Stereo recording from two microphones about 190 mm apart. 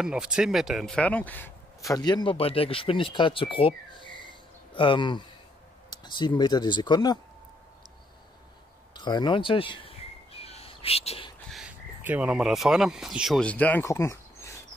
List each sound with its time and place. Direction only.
0.0 s speech: 5° right (ahead or behind); by 7.2 s 20° left (ahead or behind)
8.9 s bird: 20° left (ahead or behind)
11.5 s speech: 5° right (ahead or behind); by 14.5 s 15° left (ahead or behind)